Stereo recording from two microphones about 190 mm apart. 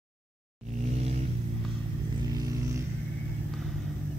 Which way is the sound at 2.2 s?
20° right (ahead or behind).